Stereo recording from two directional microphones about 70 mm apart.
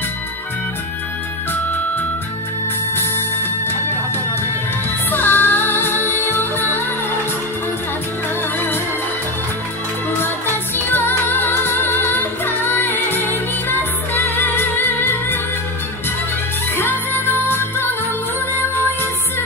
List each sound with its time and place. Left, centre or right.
1.5 s music: left
5.1 s music: left
10.2 s music: left
16.7 s music: left